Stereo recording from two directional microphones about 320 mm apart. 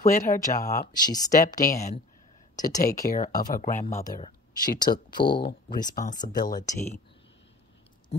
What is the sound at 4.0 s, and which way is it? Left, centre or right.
Speech, centre.